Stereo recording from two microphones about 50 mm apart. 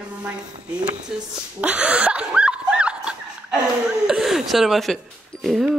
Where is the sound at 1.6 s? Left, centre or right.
Right.